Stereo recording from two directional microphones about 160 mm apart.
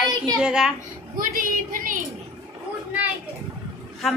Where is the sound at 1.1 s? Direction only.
60° right (ahead or behind).